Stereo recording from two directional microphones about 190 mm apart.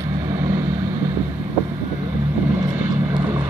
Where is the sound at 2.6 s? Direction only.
15° right (ahead or behind).